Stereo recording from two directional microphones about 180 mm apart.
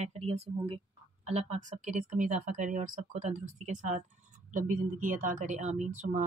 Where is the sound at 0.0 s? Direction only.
35° right (ahead or behind).